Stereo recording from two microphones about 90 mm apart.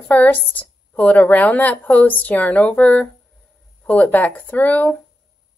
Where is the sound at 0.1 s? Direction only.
15° left (ahead or behind).